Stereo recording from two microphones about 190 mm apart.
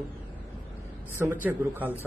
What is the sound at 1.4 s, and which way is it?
Speech, 10° right (ahead or behind).